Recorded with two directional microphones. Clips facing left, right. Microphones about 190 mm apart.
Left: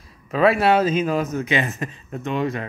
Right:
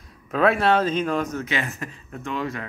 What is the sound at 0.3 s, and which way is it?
Speech, centre (ahead or behind).